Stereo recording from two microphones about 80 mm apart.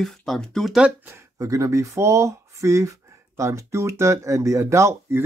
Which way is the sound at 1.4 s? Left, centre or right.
Right.